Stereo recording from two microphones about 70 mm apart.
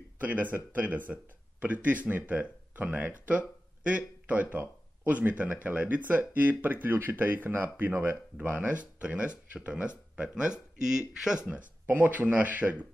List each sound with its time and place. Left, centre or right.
0.2 s speech: right; by 11.4 s centre
11.8 s speech: right